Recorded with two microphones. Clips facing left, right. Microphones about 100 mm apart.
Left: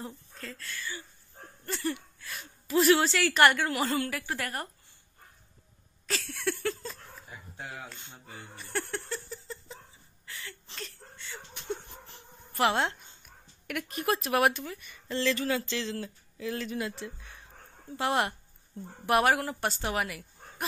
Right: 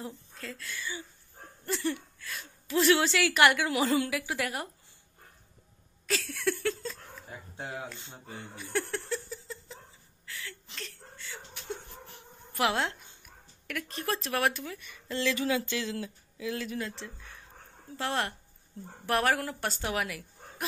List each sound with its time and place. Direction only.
0.0 s speech: centre (ahead or behind)
0.7 s speech: 15° right (ahead or behind)
1.7 s a woman's voice: centre (ahead or behind)
6.0 s a sound: centre (ahead or behind)
7.5 s speech: 25° right (ahead or behind)
8.5 s laughter: centre (ahead or behind)
10.2 s a sound: centre (ahead or behind)
12.1 s dog: 5° right (ahead or behind)
13.7 s a woman's voice: 10° left (ahead or behind)
15.3 s a woman's voice: 10° right (ahead or behind)
16.8 s a woman's voice: 10° left (ahead or behind)